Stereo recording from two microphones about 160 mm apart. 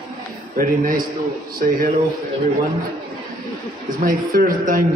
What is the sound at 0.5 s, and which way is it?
Speech, 60° right (ahead or behind).